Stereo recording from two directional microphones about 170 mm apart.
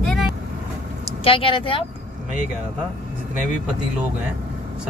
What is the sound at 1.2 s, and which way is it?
Speech, 30° left (ahead or behind).